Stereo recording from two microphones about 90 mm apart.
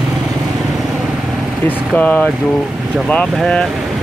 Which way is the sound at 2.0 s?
15° left (ahead or behind).